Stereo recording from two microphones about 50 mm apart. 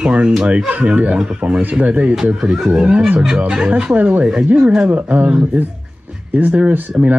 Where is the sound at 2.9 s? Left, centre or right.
Right.